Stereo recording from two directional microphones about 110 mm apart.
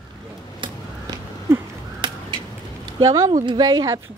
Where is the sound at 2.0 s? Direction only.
45° right (ahead or behind).